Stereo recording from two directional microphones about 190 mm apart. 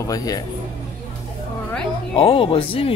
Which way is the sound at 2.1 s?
30° left (ahead or behind).